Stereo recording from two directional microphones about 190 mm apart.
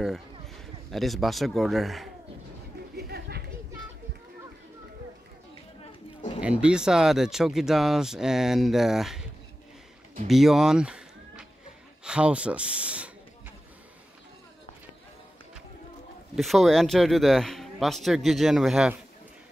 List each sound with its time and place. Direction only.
0.9 s speech: centre (ahead or behind)
3.0 s a sound: 55° right (ahead or behind)
5.9 s chatter: 35° left (ahead or behind)
6.4 s speech: 5° right (ahead or behind)
10.2 s speech: centre (ahead or behind)
16.3 s speech: centre (ahead or behind)